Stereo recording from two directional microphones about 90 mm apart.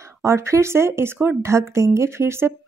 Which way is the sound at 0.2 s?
30° right (ahead or behind).